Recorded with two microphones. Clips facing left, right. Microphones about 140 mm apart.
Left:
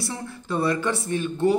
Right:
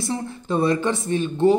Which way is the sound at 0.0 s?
25° right (ahead or behind).